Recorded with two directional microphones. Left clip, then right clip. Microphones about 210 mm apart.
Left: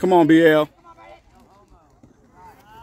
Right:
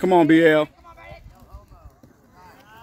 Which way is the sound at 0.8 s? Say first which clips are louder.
Right 1 dB; 35° right (ahead or behind).